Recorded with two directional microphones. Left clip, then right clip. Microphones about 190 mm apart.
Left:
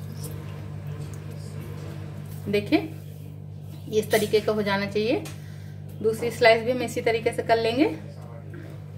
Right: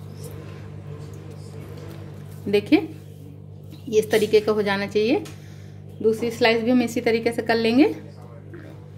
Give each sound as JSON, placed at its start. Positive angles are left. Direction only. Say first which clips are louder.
{"t": 2.5, "sound": "a woman's voice", "louder": "right 4 dB", "side_deg": -45}
{"t": 3.9, "sound": "a woman's voice", "louder": "right 4 dB", "side_deg": -45}